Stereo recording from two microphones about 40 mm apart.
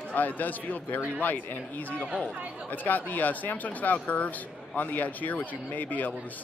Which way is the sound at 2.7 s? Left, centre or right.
Left.